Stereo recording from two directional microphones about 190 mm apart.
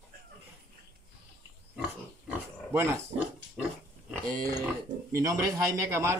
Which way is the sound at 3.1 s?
40° right (ahead or behind).